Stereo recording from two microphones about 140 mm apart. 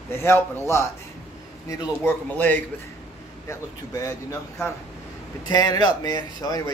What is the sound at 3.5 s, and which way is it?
Speech, 25° left (ahead or behind).